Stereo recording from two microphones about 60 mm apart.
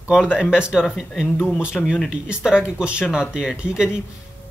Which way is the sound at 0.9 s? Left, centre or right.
Centre.